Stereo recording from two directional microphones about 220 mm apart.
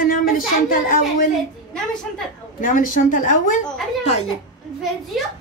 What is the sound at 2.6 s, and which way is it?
Speech, 35° left (ahead or behind).